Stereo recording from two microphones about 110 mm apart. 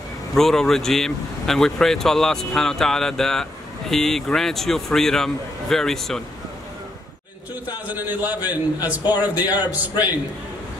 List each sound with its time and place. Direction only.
0.3 s speech: 5° left (ahead or behind)
7.9 s a man's voice: 15° right (ahead or behind)